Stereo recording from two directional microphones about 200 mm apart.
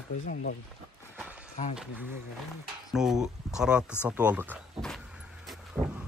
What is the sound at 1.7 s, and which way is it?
Speech, 5° right (ahead or behind).